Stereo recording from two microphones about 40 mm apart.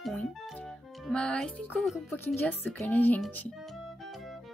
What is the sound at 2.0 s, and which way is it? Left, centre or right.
Speech, left.